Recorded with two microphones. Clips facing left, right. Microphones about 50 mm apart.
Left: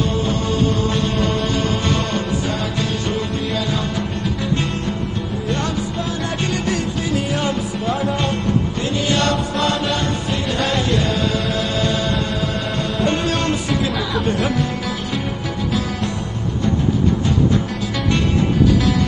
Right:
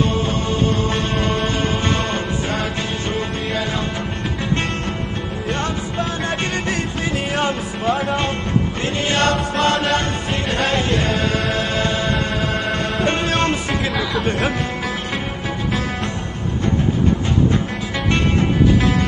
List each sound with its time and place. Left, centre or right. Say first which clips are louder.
0.1 s music: even; right
6.5 s music: left 1 dB; right
9.8 s music: right 2 dB; right
10.5 s music: right 1 dB; right